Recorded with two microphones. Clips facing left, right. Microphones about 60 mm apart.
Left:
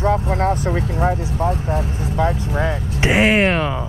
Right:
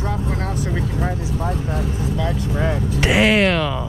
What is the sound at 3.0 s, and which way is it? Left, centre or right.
Speech, left.